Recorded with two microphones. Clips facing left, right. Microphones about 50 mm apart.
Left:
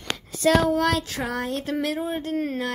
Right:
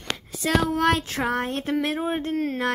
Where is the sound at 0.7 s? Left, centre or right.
Right.